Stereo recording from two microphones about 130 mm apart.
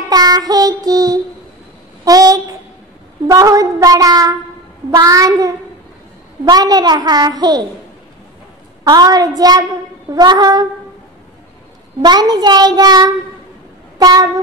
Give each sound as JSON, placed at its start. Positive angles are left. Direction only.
{"t": 0.1, "sound": "child singing", "side_deg": -30}
{"t": 6.4, "sound": "a woman's voice", "side_deg": -30}
{"t": 8.8, "sound": "a woman's voice", "side_deg": -30}
{"t": 12.0, "sound": "a woman's voice", "side_deg": -30}
{"t": 13.9, "sound": "a sound", "side_deg": -30}